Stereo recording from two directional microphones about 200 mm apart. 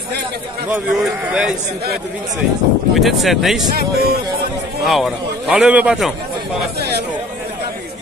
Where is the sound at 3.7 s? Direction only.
50° right (ahead or behind).